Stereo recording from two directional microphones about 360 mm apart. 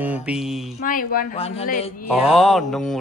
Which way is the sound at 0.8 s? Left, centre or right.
Left.